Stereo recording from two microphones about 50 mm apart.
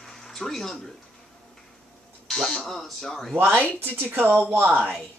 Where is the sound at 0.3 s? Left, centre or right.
Centre.